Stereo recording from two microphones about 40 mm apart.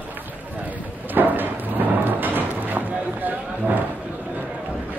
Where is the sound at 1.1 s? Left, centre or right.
Right.